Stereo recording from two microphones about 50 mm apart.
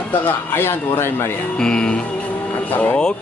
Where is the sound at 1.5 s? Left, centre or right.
Centre.